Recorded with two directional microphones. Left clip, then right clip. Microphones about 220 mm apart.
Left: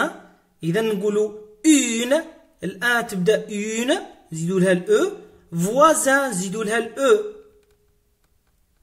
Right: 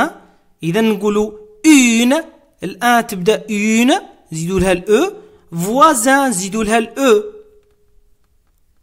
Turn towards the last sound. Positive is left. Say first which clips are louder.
# right 6 dB
turn(degrees=-45)  # may be behind; listen again after turning